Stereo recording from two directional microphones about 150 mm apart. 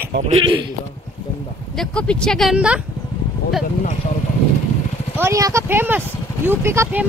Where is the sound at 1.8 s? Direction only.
5° left (ahead or behind).